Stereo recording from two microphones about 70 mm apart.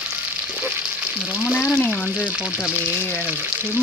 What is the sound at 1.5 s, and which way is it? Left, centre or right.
Frying, centre.